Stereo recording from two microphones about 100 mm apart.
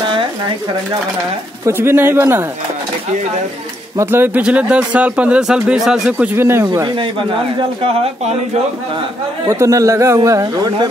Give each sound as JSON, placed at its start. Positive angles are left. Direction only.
{"t": 1.7, "sound": "speech", "side_deg": -25}
{"t": 4.0, "sound": "speech", "side_deg": -20}
{"t": 6.3, "sound": "speech", "side_deg": -25}
{"t": 7.0, "sound": "a man's voice", "side_deg": -55}
{"t": 9.5, "sound": "speech", "side_deg": -30}